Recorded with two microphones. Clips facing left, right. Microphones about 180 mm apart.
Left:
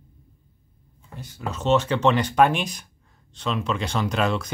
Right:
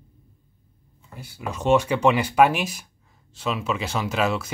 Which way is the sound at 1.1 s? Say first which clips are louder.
Even; 10° right (ahead or behind).